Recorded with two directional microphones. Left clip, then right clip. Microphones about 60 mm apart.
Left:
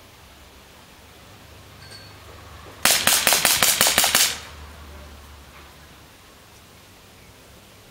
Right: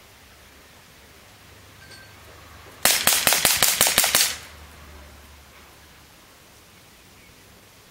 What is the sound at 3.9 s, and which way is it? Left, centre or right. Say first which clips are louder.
Gunshot: left 2 dB; right.